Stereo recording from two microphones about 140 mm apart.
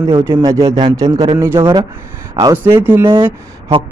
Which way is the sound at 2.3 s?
30° right (ahead or behind).